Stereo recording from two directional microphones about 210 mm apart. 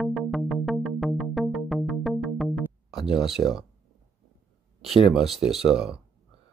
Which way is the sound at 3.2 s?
Centre (ahead or behind).